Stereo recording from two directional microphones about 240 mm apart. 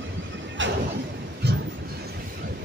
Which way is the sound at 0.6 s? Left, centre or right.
Right.